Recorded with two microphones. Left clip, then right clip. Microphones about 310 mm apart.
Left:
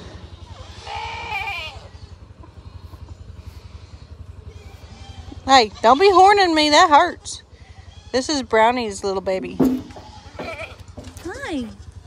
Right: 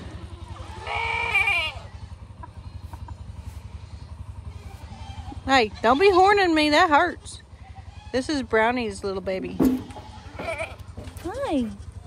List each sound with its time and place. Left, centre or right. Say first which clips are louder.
0.8 s sheep: right 3 dB; centre
5.4 s speech: left 6 dB; centre
10.4 s sheep: right 1 dB; right
11.2 s cat: right 2 dB; centre